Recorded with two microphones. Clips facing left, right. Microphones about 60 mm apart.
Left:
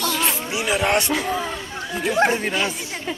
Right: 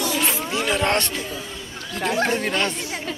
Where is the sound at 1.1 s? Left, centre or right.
Left.